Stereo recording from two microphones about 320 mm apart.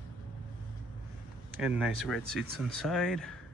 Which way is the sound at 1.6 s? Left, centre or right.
Centre.